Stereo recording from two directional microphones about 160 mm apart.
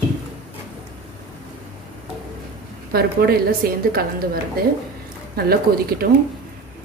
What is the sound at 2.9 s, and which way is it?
A woman's voice, 75° right (ahead or behind).